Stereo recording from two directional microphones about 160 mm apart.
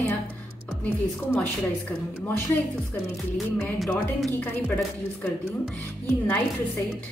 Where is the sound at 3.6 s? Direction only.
Centre (ahead or behind).